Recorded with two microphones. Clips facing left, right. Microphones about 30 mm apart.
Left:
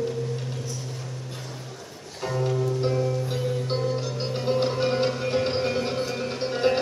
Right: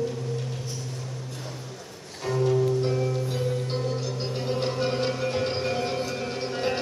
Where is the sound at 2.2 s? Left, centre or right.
Centre.